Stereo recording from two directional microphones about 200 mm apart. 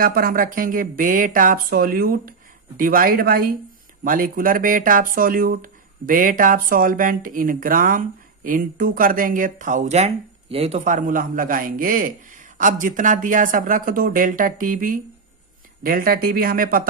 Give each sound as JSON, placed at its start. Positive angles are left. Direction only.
{"t": 0.0, "sound": "speech", "side_deg": -45}